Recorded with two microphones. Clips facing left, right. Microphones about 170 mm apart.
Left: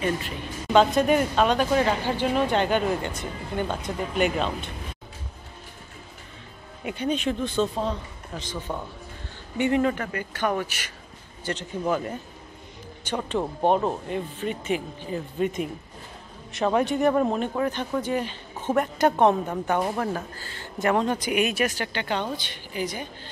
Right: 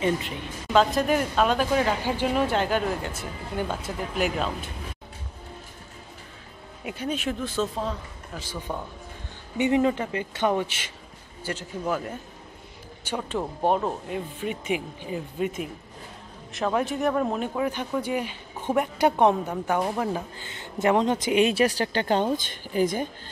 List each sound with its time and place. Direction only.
0.7 s speech: centre (ahead or behind)
6.8 s speech: centre (ahead or behind); by 10.9 s 20° right (ahead or behind)
11.4 s speech: 5° right (ahead or behind); by 23.0 s 45° right (ahead or behind)